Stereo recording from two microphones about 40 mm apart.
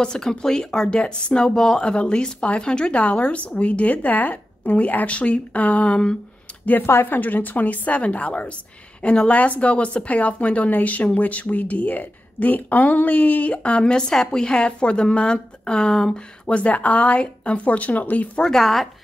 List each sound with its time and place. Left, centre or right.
0.0 s speech: centre
3.0 s a woman's voice: left
7.1 s a woman's voice: left
9.3 s a woman's voice: left; by 16.1 s centre
16.4 s a woman's voice: left
18.4 s speech: centre